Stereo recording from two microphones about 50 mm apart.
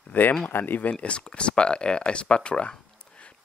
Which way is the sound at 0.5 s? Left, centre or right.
Left.